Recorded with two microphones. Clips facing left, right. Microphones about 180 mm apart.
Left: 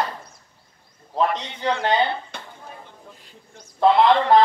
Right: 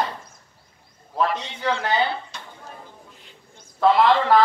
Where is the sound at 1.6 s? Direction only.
25° left (ahead or behind).